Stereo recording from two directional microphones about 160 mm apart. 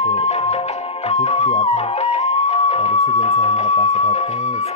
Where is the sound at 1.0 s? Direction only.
40° left (ahead or behind).